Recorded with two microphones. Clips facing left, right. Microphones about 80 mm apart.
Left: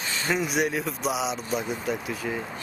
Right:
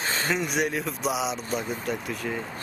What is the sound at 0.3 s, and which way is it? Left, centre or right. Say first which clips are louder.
Speech: left 3 dB; centre.